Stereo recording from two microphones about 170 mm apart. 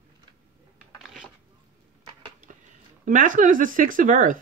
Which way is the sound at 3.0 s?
50° right (ahead or behind).